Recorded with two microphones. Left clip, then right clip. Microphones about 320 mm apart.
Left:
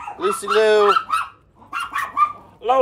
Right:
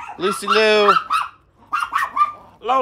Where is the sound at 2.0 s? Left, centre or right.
Right.